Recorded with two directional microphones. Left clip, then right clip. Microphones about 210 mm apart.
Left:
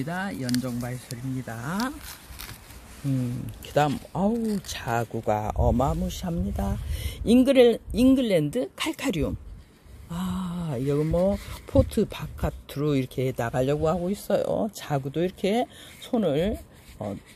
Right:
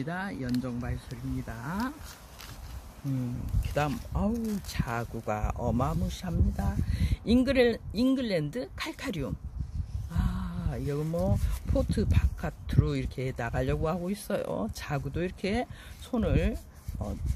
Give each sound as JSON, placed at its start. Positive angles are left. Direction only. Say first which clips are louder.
{"t": 0.0, "sound": "speech", "louder": "left 4 dB", "side_deg": 30}
{"t": 3.8, "sound": "speech", "louder": "left 7 dB", "side_deg": 30}